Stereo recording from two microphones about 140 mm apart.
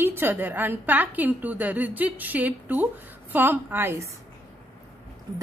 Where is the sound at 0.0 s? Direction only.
15° right (ahead or behind).